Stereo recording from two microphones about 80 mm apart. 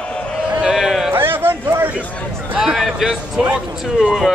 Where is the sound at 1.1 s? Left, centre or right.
Right.